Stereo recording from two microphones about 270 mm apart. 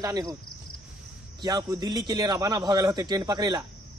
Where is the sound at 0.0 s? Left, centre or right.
Centre.